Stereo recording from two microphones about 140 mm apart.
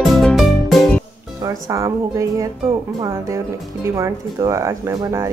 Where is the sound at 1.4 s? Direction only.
25° right (ahead or behind).